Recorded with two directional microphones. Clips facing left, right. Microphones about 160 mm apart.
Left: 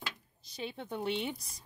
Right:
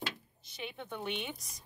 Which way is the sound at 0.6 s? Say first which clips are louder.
Left 4 dB; 30° left (ahead or behind).